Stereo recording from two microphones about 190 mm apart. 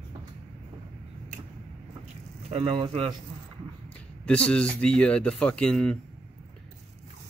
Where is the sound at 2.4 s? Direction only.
30° right (ahead or behind).